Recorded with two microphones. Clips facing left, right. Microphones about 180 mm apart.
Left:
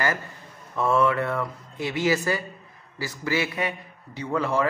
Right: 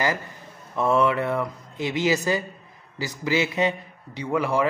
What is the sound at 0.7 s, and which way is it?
A man's voice, 15° right (ahead or behind).